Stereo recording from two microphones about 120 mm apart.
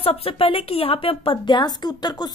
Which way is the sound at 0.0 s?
50° left (ahead or behind).